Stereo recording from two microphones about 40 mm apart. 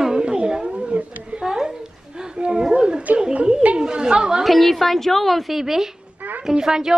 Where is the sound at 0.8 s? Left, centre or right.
Right.